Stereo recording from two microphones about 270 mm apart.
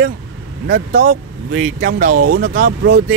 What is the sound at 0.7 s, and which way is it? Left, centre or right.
Speech, right.